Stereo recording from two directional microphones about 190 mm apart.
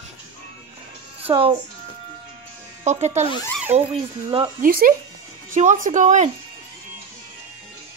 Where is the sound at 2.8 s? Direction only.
35° right (ahead or behind).